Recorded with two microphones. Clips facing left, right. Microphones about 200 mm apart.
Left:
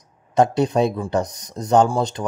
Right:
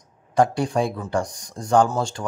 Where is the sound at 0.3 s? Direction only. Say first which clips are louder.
Left 3 dB; 20° left (ahead or behind).